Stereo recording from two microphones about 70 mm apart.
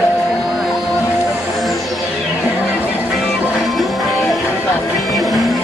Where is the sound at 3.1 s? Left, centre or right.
Centre.